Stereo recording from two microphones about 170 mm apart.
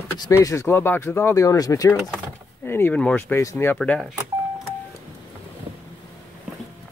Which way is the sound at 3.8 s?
5° left (ahead or behind).